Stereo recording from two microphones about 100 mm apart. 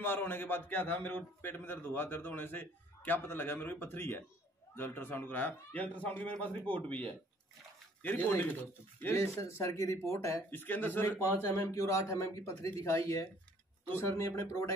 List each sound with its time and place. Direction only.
0.0 s a man's voice: 20° left (ahead or behind)
8.0 s a man's voice: 20° left (ahead or behind)
10.5 s a man's voice: 20° left (ahead or behind)
11.3 s speech: 30° left (ahead or behind)